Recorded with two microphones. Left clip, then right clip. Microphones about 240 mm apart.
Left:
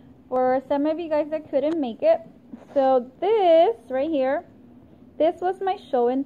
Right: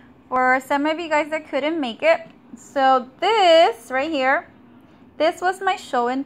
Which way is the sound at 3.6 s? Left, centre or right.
Centre.